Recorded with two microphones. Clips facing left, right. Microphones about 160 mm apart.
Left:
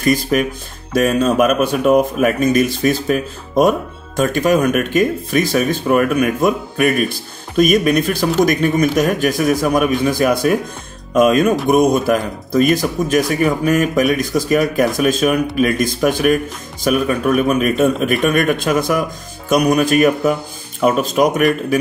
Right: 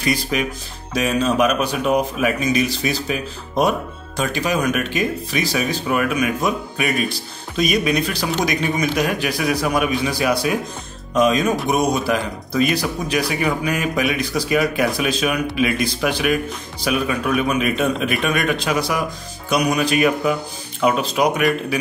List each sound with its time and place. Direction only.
0.0 s speech: 50° left (ahead or behind)